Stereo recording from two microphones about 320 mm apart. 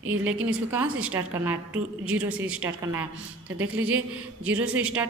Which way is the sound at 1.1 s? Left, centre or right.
Centre.